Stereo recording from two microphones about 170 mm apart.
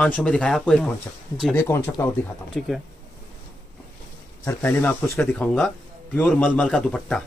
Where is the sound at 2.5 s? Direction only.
Centre (ahead or behind).